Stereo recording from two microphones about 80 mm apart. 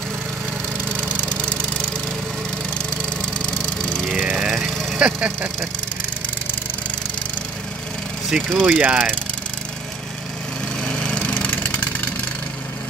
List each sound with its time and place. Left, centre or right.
0.8 s engine: centre
3.4 s a sound: centre
4.1 s vehicle: centre
8.6 s speech: centre
10.8 s lawn mower: centre
11.2 s vehicle: left